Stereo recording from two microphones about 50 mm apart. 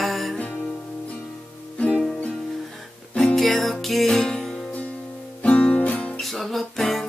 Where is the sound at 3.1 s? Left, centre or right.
Centre.